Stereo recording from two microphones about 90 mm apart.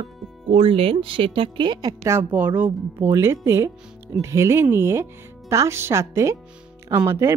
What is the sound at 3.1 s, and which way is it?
Speech, 30° right (ahead or behind).